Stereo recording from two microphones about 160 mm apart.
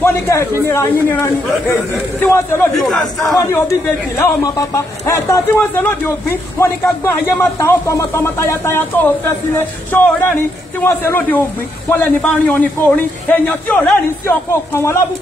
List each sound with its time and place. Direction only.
0.0 s a man's voice: 15° left (ahead or behind)
2.8 s a man's voice: centre (ahead or behind)
3.3 s a man's voice: 20° left (ahead or behind)